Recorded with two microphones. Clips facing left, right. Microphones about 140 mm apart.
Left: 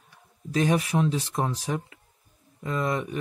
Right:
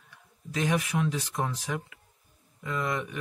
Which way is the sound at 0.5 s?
35° left (ahead or behind).